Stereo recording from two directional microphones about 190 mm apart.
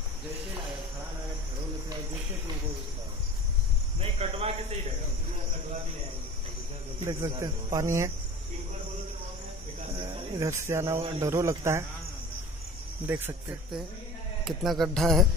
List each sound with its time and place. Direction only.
4.0 s speech: 30° right (ahead or behind)
7.1 s speech: 20° right (ahead or behind)
10.1 s speech: 20° right (ahead or behind)
13.0 s speech: 10° right (ahead or behind)
14.4 s speech: centre (ahead or behind)